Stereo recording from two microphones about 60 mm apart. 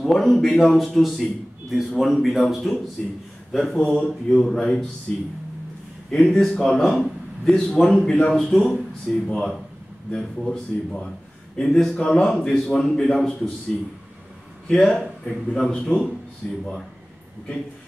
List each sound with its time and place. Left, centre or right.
0.0 s a man's voice: centre
4.0 s a man's voice: centre
6.0 s a man's voice: centre
14.7 s a man's voice: centre